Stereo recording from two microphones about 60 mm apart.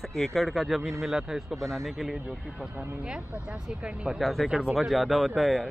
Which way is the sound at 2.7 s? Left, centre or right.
Right.